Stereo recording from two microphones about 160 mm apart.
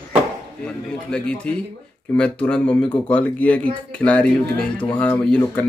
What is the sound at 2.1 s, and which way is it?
A man's voice, 5° left (ahead or behind).